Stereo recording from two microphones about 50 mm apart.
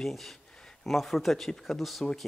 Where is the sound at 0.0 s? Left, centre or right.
Centre.